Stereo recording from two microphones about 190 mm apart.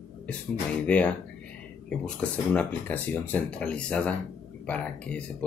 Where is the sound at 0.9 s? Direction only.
5° left (ahead or behind).